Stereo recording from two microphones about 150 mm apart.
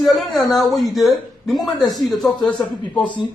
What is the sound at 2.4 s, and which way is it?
Speech, 30° left (ahead or behind).